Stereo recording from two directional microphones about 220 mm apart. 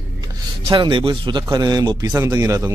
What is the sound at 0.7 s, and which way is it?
Speech, 20° right (ahead or behind).